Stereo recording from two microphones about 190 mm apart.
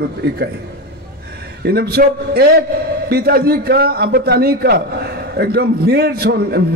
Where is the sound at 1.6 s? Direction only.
55° right (ahead or behind).